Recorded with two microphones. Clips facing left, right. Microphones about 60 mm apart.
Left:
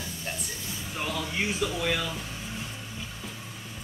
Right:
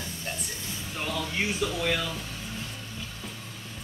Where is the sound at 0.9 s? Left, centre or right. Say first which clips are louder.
Even; centre.